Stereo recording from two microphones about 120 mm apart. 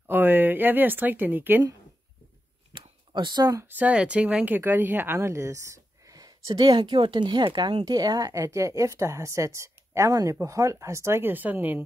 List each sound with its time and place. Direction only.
0.1 s speech: 15° right (ahead or behind)
2.7 s a sound: 45° right (ahead or behind)
3.6 s speech: 15° right (ahead or behind); by 6.6 s 30° right (ahead or behind)
6.6 s a woman's voice: 45° right (ahead or behind); by 11.8 s 15° right (ahead or behind)